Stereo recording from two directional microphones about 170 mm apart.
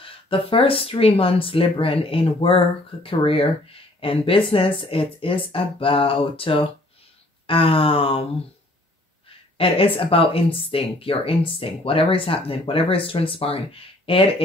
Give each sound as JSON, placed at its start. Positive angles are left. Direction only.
{"t": 0.0, "sound": "speech", "side_deg": 30}
{"t": 9.6, "sound": "speech", "side_deg": 30}